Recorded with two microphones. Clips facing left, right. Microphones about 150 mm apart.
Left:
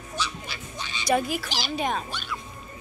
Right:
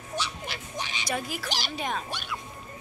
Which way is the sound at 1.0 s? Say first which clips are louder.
Left 10 dB; 65° left (ahead or behind).